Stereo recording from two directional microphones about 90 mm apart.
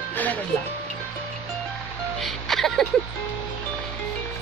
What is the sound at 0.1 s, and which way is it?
Music, 20° left (ahead or behind).